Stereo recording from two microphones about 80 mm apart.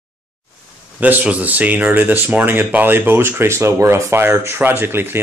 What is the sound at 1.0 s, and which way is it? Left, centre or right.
Speech, centre.